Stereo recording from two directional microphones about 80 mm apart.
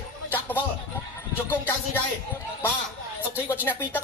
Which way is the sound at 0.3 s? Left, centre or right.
Left.